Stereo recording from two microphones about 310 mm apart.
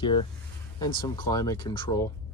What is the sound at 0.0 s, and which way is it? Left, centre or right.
Speech, centre.